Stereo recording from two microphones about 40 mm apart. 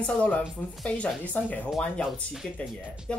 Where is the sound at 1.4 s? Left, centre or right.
Left.